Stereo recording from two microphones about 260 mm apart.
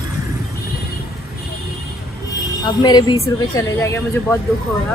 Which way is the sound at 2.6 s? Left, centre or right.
Centre.